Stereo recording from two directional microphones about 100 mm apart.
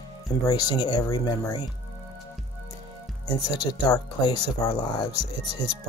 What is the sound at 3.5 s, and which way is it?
Speech, 45° left (ahead or behind).